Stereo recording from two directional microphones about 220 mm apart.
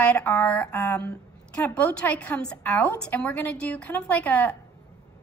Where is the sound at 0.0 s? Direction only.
5° left (ahead or behind).